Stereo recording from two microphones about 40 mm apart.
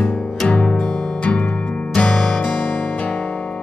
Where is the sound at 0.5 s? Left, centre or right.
Left.